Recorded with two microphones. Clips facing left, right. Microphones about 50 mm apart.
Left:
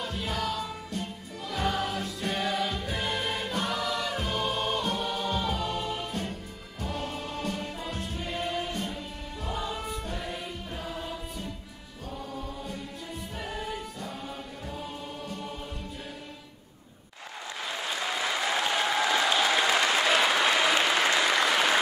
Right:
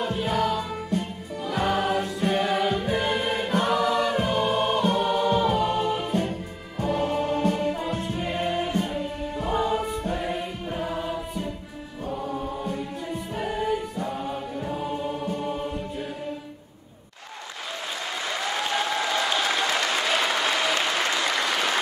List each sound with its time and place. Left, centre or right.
0.0 s music: right
2.7 s music: right
3.4 s choir: right
4.1 s music: right
13.3 s choir: right
15.2 s music: right
17.8 s applause: centre